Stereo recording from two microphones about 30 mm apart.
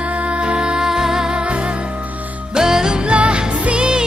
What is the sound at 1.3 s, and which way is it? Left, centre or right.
Music, right.